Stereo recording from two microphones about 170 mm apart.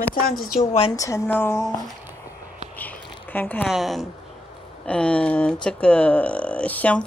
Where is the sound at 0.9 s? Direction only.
20° left (ahead or behind).